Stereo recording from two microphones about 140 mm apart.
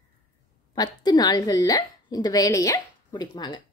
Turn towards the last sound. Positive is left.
turn(degrees=30)  # may be behind; listen again after turning